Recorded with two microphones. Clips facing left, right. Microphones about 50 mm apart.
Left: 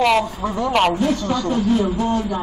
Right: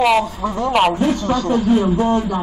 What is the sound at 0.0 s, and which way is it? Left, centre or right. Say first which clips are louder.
Speech: right 2 dB; centre.